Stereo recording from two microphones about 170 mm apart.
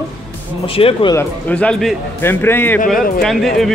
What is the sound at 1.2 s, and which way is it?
Speech, 10° left (ahead or behind).